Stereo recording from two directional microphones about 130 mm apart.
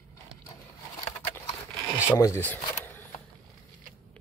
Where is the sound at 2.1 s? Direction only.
25° left (ahead or behind).